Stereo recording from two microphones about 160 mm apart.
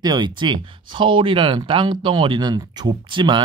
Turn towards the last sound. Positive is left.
turn(degrees=-30)  # may be behind; listen again after turning